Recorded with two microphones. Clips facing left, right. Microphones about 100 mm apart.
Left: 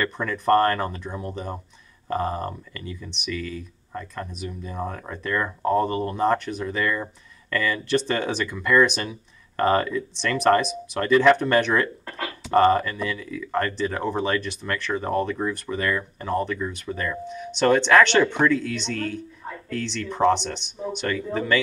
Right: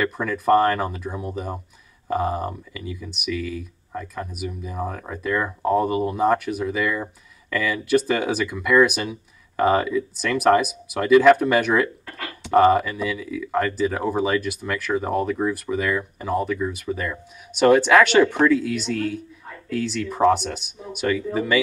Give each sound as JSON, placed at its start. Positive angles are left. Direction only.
{"t": 0.0, "sound": "speech", "side_deg": -5}